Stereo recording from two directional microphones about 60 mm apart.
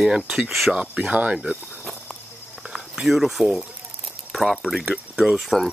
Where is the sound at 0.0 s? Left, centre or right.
Centre.